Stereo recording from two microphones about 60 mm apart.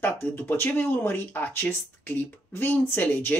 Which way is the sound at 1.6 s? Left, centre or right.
Left.